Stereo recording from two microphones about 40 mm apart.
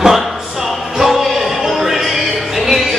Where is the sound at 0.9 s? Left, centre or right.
Centre.